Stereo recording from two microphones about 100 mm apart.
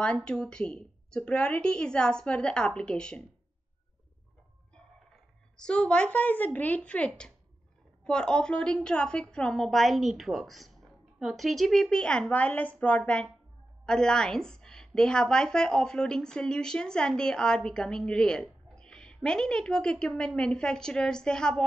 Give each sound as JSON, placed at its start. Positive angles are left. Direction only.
{"t": 0.0, "sound": "a woman's voice", "side_deg": 10}
{"t": 5.6, "sound": "a woman's voice", "side_deg": 10}